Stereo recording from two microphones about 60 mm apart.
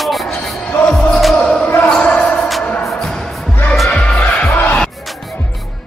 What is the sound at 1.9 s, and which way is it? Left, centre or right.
Basketball bounce, centre.